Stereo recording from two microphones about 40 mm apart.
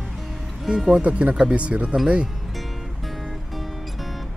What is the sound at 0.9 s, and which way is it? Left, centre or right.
Speech, right.